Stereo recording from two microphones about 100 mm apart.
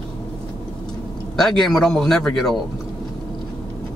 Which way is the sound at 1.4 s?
5° left (ahead or behind).